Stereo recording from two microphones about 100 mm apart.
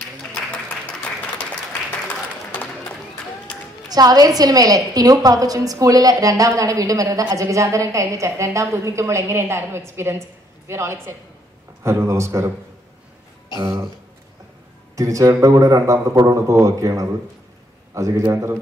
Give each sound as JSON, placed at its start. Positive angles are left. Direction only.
{"t": 1.2, "sound": "applause", "side_deg": 15}
{"t": 3.9, "sound": "a woman's voice", "side_deg": -40}
{"t": 13.6, "sound": "a woman's voice", "side_deg": -25}
{"t": 15.0, "sound": "a woman's voice", "side_deg": -30}